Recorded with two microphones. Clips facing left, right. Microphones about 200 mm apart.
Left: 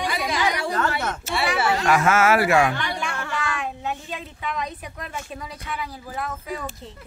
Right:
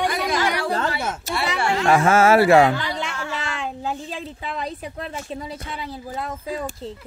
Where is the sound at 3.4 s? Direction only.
25° right (ahead or behind).